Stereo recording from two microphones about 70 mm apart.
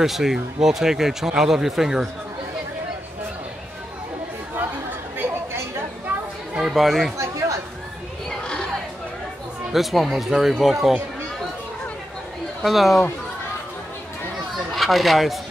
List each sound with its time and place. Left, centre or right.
0.0 s speech: centre
6.5 s speech: centre
7.2 s chatter: right
8.3 s chatter: centre
9.7 s speech: centre
12.6 s speech: centre
14.7 s speech: centre